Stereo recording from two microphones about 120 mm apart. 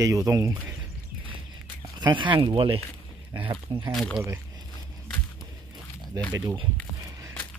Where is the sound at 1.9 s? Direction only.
40° right (ahead or behind).